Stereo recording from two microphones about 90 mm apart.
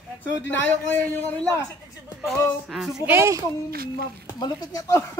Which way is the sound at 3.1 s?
30° right (ahead or behind).